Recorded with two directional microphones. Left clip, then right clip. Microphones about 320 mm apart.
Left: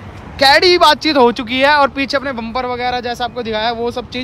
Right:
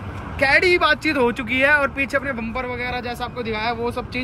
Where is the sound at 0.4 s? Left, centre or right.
Centre.